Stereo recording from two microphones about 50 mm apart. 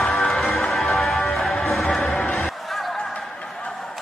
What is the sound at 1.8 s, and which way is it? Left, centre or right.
Music, centre.